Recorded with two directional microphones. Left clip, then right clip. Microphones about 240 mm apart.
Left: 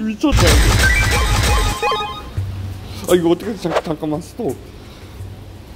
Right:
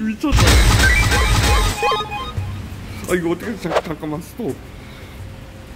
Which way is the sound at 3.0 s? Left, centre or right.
Centre.